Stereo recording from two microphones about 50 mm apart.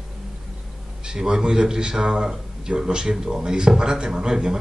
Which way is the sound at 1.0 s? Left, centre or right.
Centre.